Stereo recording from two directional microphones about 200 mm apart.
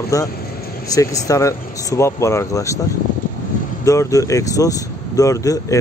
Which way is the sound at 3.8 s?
15° left (ahead or behind).